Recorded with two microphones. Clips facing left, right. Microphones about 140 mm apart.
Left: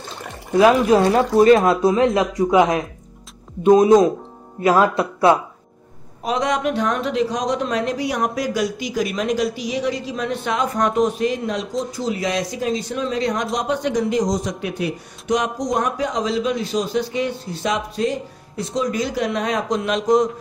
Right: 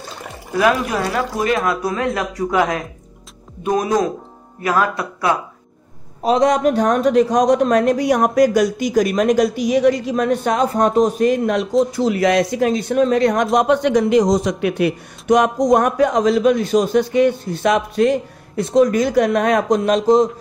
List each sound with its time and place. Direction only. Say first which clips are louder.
0.6 s speech: left 4 dB; 25° left (ahead or behind)
6.2 s speech: right 6 dB; 35° right (ahead or behind); by 19.8 s 55° right (ahead or behind)
19.8 s speech: right 1 dB; 35° right (ahead or behind)